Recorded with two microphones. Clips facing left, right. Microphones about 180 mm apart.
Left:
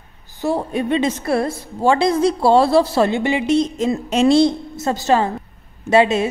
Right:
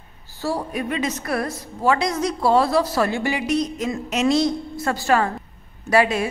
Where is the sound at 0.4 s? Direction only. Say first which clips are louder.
Left 5 dB; 25° left (ahead or behind).